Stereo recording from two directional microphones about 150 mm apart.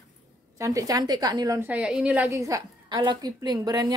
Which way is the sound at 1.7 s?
5° right (ahead or behind).